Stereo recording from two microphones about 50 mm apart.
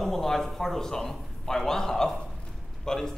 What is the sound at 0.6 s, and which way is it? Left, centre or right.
A man's voice, centre.